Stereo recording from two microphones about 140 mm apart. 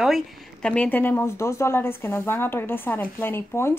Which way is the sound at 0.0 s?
Centre (ahead or behind).